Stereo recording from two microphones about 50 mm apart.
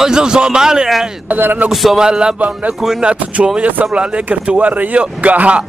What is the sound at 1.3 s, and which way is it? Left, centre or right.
Speech, right.